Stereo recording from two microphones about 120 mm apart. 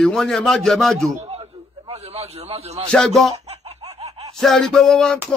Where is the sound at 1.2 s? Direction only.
60° right (ahead or behind).